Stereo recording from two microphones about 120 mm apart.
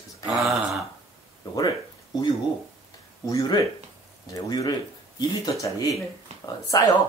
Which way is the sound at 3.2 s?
30° left (ahead or behind).